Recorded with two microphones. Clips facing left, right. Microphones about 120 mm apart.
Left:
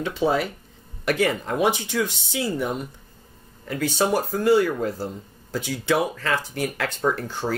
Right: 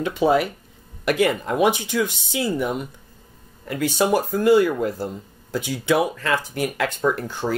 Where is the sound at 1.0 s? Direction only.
15° right (ahead or behind).